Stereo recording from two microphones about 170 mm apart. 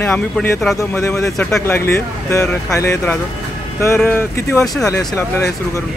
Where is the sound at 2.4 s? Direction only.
5° left (ahead or behind).